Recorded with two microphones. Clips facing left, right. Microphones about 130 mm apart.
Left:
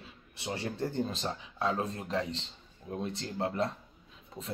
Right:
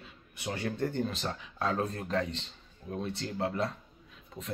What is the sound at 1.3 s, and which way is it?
Speech, 20° left (ahead or behind).